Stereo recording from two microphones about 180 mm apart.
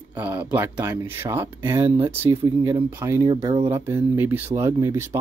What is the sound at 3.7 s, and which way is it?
Speech, 15° right (ahead or behind).